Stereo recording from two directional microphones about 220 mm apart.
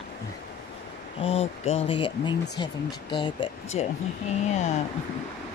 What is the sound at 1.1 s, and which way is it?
Speech, 25° left (ahead or behind).